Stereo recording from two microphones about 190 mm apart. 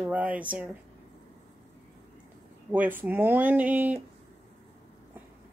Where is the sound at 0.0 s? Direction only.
10° right (ahead or behind).